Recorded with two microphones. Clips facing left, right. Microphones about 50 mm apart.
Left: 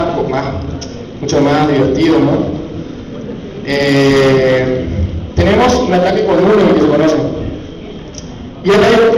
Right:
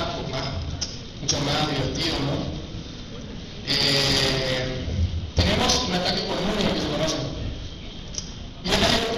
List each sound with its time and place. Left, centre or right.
0.2 s a sound: left
1.2 s a man's voice: left
3.6 s a man's voice: left
8.6 s a man's voice: left